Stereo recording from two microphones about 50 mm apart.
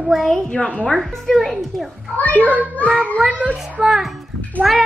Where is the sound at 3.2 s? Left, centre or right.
Right.